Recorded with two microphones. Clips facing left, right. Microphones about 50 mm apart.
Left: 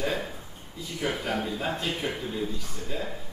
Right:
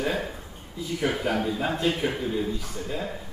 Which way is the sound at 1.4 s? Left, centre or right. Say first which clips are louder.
Right 5 dB; centre.